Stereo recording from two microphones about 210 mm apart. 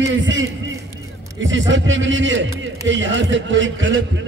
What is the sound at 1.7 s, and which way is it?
A man's voice, 60° right (ahead or behind).